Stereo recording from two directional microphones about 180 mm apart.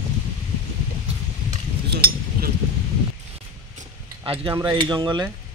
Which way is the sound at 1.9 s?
55° right (ahead or behind).